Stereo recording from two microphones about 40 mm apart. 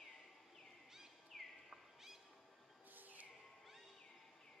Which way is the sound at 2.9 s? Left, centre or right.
Right.